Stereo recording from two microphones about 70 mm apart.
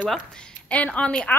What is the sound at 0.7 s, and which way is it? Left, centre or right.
Speech, centre.